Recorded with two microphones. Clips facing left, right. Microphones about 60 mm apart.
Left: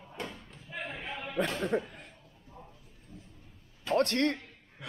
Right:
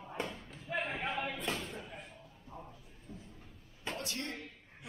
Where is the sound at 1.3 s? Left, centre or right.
Left.